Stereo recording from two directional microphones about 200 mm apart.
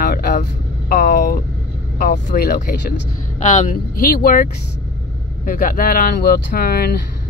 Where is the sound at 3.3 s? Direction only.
35° left (ahead or behind).